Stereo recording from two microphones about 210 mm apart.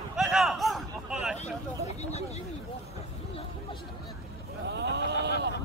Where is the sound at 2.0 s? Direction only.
30° left (ahead or behind).